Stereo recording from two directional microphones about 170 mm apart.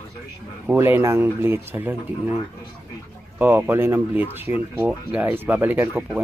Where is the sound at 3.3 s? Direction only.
10° right (ahead or behind).